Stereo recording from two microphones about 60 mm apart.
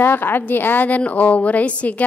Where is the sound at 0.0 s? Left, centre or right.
Left.